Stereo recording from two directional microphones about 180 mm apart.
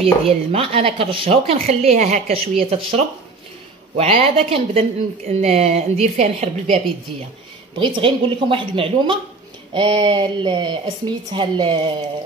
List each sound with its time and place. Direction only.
0.0 s a woman's voice: 30° right (ahead or behind)
7.8 s speech: 30° right (ahead or behind)